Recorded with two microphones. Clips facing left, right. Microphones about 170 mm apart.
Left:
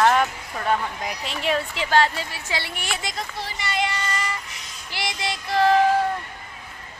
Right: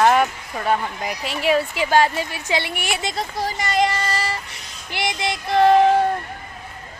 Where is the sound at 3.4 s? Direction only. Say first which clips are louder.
Right 7 dB; 40° right (ahead or behind).